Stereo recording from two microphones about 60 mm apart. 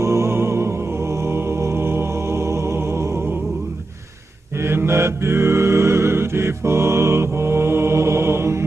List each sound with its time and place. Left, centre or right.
0.0 s music: right
4.6 s mantra: right